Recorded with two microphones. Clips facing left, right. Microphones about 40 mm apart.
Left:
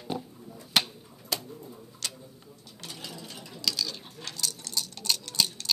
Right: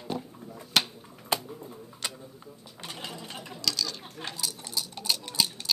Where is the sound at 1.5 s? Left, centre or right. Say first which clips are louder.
Right 2 dB; right.